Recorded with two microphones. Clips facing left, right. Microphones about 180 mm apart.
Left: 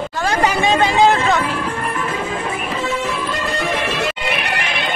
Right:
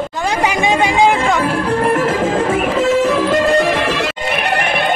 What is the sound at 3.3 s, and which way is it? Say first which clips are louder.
Music: right 10 dB; 45° right (ahead or behind).